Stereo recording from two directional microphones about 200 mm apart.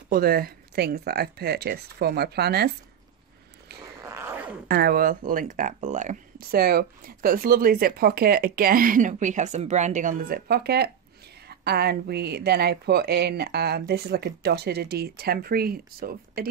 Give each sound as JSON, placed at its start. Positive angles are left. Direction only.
{"t": 0.1, "sound": "speech", "side_deg": -50}
{"t": 4.0, "sound": "a sound", "side_deg": -10}
{"t": 4.6, "sound": "speech", "side_deg": -50}